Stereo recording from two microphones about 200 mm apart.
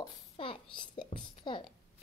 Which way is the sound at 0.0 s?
25° left (ahead or behind).